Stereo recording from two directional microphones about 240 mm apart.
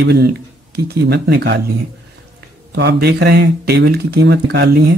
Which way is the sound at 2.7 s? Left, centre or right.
Right.